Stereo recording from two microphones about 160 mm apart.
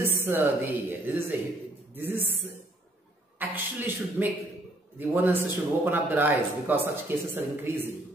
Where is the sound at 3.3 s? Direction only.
10° right (ahead or behind).